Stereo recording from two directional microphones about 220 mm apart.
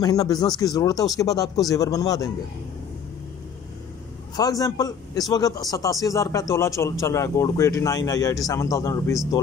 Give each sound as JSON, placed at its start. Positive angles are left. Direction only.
{"t": 0.0, "sound": "speech", "side_deg": 15}
{"t": 4.4, "sound": "speech", "side_deg": 15}